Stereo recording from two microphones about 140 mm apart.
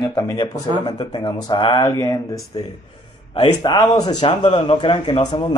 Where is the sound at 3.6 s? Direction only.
30° left (ahead or behind).